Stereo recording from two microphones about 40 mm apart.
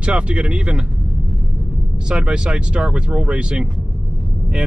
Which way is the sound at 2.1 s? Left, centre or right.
Right.